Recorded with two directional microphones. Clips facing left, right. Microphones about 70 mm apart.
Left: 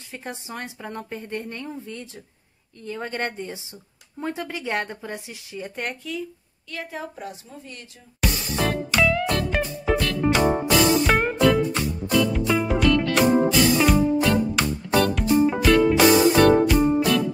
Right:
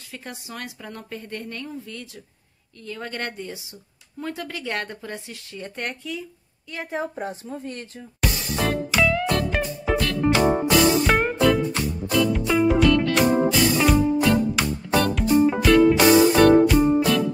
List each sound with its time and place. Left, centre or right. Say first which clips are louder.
0.1 s a woman's voice: left 2 dB; left
5.8 s speech: even; centre
6.7 s a woman's voice: right 4 dB; right
7.2 s a woman's voice: right 6 dB; right
8.2 s music: even; centre